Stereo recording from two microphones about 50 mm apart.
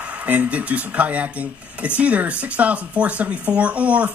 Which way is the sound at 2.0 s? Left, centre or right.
Right.